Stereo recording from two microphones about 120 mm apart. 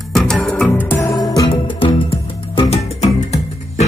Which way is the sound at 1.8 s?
55° left (ahead or behind).